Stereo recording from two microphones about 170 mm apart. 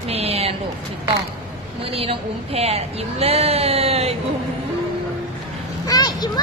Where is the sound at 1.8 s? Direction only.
35° right (ahead or behind).